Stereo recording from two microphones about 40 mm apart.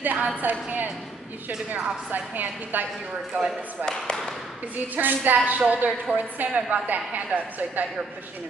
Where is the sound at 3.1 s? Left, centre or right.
Right.